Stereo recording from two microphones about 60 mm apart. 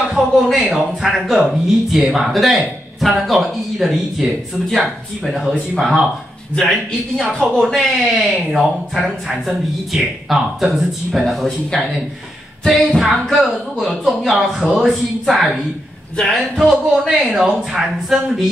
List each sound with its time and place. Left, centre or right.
0.1 s speech: centre
7.2 s speech: centre
13.0 s speech: centre
16.7 s speech: centre
17.1 s speech: centre